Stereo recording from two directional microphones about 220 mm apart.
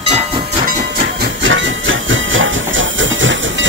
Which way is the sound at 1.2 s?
60° right (ahead or behind).